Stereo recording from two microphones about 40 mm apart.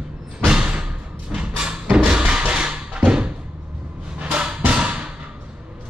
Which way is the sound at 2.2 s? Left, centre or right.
Right.